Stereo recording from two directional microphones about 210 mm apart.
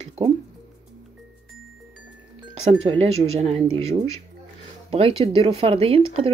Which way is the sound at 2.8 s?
30° right (ahead or behind).